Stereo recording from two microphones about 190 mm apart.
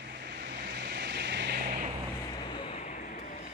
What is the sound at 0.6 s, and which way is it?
Vehicle, 60° right (ahead or behind).